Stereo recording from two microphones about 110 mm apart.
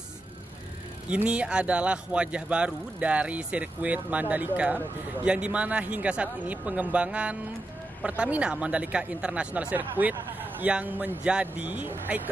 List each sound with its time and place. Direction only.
1.0 s a man's voice: 10° right (ahead or behind)